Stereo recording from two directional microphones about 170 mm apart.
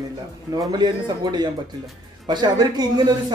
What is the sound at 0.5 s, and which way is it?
Speech, 20° right (ahead or behind).